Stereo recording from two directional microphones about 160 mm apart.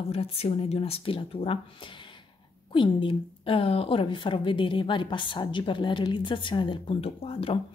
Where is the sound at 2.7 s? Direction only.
30° left (ahead or behind).